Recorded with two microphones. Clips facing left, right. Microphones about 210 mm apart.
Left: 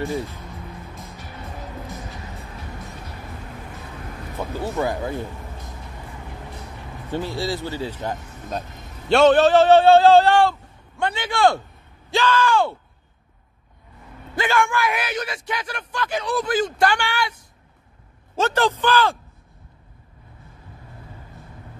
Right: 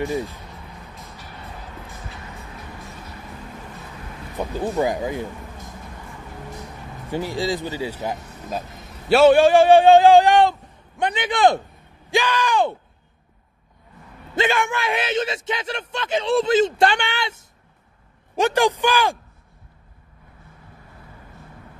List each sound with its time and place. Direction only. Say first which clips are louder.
4.4 s speech: right 3 dB; 15° right (ahead or behind)
7.1 s a man's voice: right 2 dB; 15° right (ahead or behind)
14.3 s a man's voice: even; 20° right (ahead or behind)